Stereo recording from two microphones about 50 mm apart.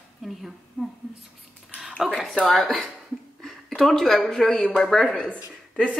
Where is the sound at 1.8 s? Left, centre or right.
Centre.